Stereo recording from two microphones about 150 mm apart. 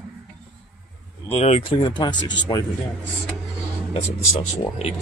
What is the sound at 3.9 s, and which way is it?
A man's voice, 45° left (ahead or behind).